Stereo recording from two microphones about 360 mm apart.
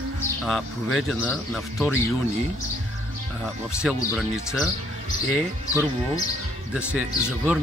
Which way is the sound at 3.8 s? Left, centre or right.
Centre.